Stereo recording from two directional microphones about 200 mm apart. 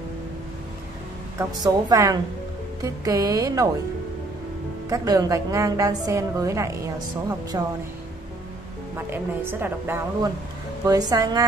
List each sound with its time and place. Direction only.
1.4 s a woman's voice: 20° right (ahead or behind)
4.8 s a woman's voice: 15° right (ahead or behind)
8.9 s a woman's voice: 10° right (ahead or behind)